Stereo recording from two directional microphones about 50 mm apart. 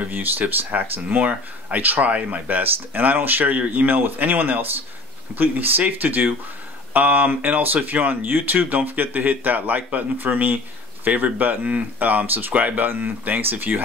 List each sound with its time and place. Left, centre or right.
0.1 s speech: right